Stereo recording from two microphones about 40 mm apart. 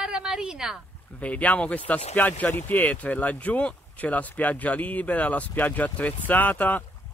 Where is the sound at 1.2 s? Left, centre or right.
Left.